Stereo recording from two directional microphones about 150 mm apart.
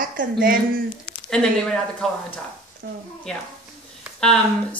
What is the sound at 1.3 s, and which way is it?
Speech, 5° left (ahead or behind).